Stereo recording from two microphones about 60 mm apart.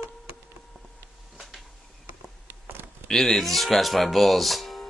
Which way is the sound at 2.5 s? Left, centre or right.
Right.